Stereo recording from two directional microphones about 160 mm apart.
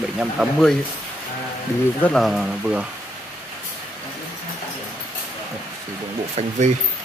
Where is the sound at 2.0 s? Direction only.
Centre (ahead or behind).